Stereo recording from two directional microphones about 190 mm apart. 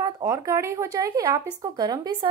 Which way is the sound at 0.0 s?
20° right (ahead or behind).